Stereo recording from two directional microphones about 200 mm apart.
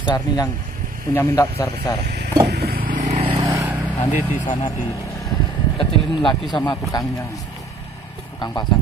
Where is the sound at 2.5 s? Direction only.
50° right (ahead or behind).